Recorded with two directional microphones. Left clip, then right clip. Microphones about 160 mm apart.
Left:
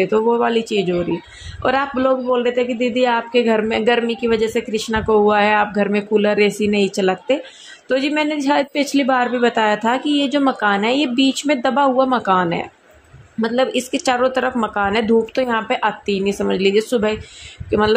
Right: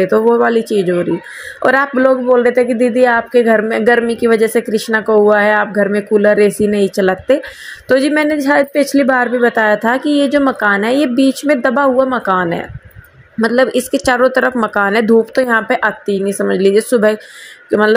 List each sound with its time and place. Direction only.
0.0 s speech: 15° right (ahead or behind)
13.4 s speech: 20° right (ahead or behind)